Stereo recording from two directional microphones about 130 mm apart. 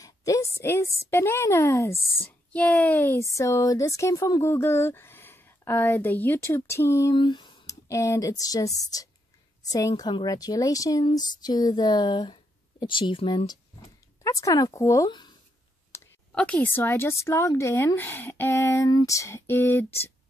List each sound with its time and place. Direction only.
0.0 s a woman's voice: 25° left (ahead or behind)
2.5 s speech: 10° left (ahead or behind)
7.2 s a sound: 35° left (ahead or behind)
7.9 s speech: 25° left (ahead or behind); by 13.5 s 45° left (ahead or behind)
14.2 s speech: 25° left (ahead or behind)
15.9 s a sound: 20° left (ahead or behind)
16.3 s speech: 10° left (ahead or behind)